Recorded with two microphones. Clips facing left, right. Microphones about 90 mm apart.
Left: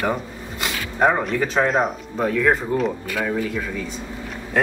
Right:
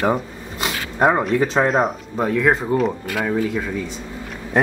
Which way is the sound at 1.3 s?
25° right (ahead or behind).